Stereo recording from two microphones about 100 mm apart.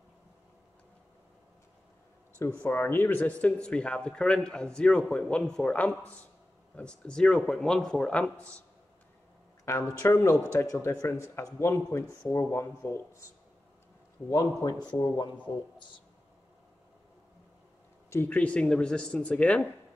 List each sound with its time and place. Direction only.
2.6 s speech: 20° left (ahead or behind)
9.9 s speech: 25° left (ahead or behind)
14.3 s a man's voice: 40° left (ahead or behind)
18.1 s speech: 20° left (ahead or behind)